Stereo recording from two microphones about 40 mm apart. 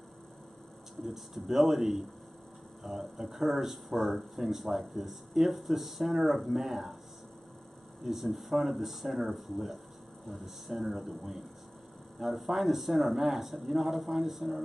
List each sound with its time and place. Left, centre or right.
1.0 s speech: centre
8.0 s speech: centre